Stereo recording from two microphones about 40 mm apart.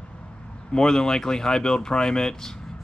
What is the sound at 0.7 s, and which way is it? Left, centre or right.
Speech, centre.